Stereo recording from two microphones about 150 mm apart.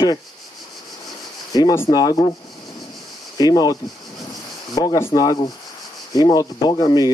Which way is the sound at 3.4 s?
25° left (ahead or behind).